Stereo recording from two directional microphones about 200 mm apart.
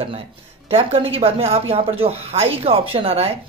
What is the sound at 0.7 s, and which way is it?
Speech, 25° right (ahead or behind).